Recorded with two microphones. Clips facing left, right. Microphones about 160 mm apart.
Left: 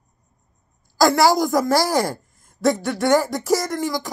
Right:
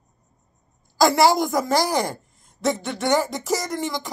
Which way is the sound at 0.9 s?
20° right (ahead or behind).